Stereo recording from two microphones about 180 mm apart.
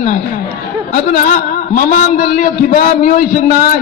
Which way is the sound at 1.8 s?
45° left (ahead or behind).